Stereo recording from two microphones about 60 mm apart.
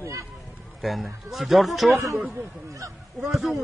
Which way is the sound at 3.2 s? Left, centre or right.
Centre.